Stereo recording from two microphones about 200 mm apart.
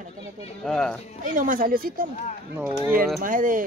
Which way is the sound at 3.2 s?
40° right (ahead or behind).